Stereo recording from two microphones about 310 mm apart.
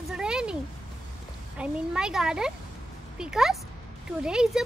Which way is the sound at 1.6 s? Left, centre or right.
Centre.